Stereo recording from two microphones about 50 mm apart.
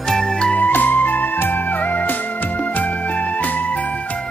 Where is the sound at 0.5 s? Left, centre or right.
Left.